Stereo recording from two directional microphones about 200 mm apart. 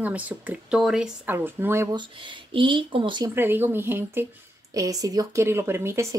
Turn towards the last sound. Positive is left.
turn(degrees=-10)  # may be behind; listen again after turning